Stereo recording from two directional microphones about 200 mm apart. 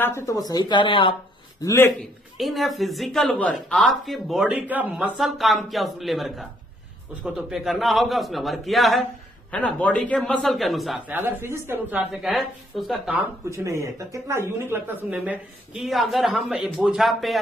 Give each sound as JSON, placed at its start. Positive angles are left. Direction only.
{"t": 0.0, "sound": "speech", "side_deg": 15}
{"t": 1.6, "sound": "a man's voice", "side_deg": 15}
{"t": 2.0, "sound": "speech", "side_deg": 0}